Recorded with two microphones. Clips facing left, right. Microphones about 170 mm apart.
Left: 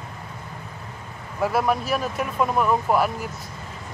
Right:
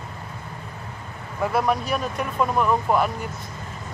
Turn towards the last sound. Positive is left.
turn(degrees=5)  # may be behind; listen again after turning